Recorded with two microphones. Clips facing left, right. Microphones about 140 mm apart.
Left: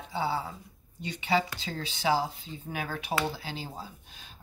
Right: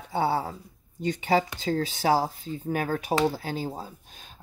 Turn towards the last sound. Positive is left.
turn(degrees=-45)  # may be behind; listen again after turning